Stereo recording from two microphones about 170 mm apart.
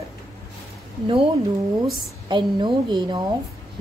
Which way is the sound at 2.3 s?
25° right (ahead or behind).